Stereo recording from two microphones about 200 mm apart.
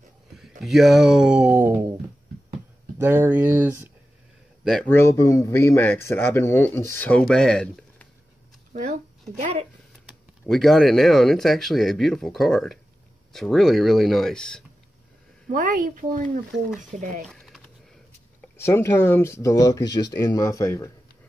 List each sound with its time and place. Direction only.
0.4 s speech: centre (ahead or behind)
3.0 s speech: 10° right (ahead or behind)
4.9 s speech: 15° left (ahead or behind)
8.7 s speech: 40° right (ahead or behind)
10.0 s speech: centre (ahead or behind)
15.4 s speech: 40° right (ahead or behind)
17.3 s a sound: centre (ahead or behind)
18.4 s speech: 10° left (ahead or behind)